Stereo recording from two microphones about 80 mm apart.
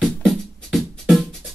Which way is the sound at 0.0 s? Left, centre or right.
Centre.